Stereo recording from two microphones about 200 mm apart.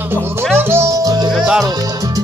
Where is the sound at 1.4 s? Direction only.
5° right (ahead or behind).